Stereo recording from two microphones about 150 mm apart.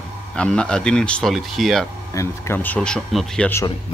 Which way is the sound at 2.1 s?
20° left (ahead or behind).